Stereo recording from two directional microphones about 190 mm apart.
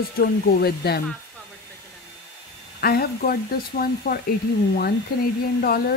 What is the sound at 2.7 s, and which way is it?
Speech, 55° left (ahead or behind).